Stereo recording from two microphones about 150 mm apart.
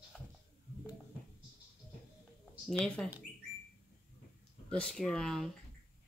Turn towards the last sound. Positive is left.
turn(degrees=5)  # may be behind; listen again after turning